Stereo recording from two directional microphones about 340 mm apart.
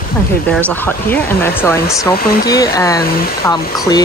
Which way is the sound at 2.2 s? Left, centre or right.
Left.